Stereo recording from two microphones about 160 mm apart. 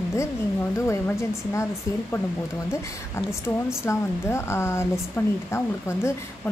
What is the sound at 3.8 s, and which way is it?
Speech, 15° left (ahead or behind).